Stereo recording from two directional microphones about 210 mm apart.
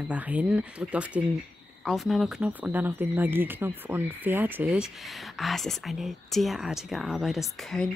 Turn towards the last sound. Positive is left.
turn(degrees=0)  # may be behind; listen again after turning